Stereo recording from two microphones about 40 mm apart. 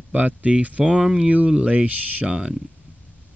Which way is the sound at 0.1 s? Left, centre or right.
Right.